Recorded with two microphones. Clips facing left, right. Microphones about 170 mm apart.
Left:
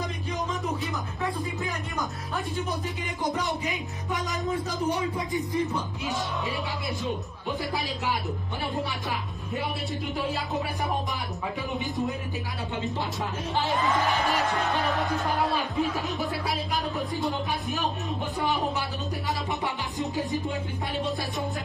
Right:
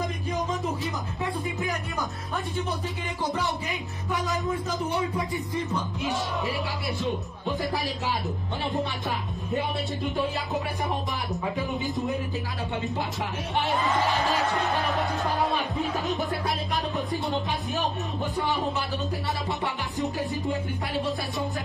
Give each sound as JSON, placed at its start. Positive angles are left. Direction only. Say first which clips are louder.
{"t": 3.3, "sound": "a sound", "louder": "left 1 dB", "side_deg": 15}
{"t": 15.7, "sound": "music", "louder": "even", "side_deg": 0}
{"t": 19.6, "sound": "music", "louder": "right 1 dB", "side_deg": 20}